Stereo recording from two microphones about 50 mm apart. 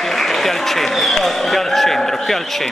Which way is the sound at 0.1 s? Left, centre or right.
Centre.